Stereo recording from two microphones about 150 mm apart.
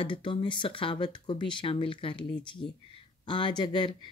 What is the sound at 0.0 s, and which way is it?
Speech, 35° left (ahead or behind).